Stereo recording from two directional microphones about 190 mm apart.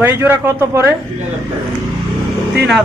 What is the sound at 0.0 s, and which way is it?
Speech, 10° right (ahead or behind).